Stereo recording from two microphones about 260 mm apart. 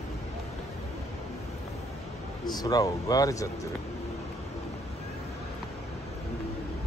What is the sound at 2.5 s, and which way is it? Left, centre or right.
Speech, centre.